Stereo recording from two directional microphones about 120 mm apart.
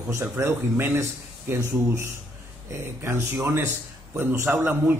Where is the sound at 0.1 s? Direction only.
20° right (ahead or behind).